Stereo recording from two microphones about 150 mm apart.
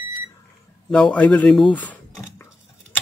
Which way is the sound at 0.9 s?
5° left (ahead or behind).